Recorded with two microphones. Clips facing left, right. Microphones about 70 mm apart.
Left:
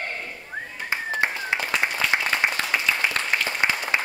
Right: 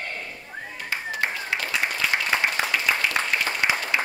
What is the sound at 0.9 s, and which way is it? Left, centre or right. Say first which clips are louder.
Clapping: left 2 dB; left.